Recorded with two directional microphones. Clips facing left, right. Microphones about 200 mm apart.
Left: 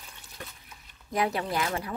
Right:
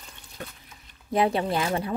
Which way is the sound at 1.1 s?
25° right (ahead or behind).